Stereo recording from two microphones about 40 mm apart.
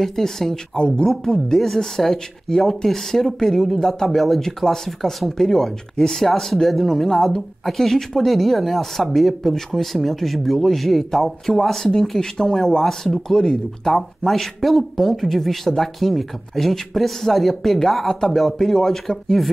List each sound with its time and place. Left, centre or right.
0.0 s speech: centre